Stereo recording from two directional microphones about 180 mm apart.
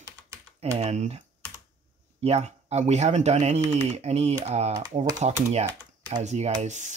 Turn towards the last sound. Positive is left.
turn(degrees=-40)  # may be behind; listen again after turning